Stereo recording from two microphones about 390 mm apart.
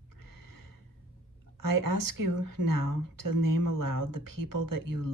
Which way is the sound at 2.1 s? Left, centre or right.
Right.